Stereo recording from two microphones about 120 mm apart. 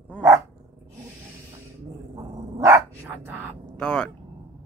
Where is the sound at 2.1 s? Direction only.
30° right (ahead or behind).